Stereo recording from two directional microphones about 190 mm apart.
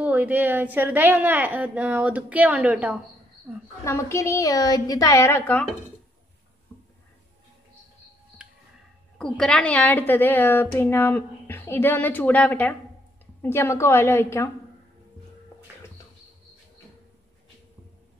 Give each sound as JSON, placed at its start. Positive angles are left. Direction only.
{"t": 0.0, "sound": "a woman's voice", "side_deg": -10}
{"t": 3.8, "sound": "a woman's voice", "side_deg": 15}
{"t": 9.2, "sound": "a woman's voice", "side_deg": 5}